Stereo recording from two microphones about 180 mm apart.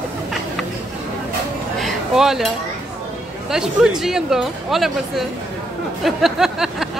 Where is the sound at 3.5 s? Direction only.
5° right (ahead or behind).